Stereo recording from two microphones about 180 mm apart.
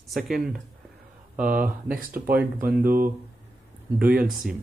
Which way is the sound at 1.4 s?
50° right (ahead or behind).